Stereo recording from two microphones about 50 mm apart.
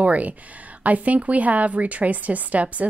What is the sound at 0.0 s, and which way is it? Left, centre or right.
A woman's voice, right.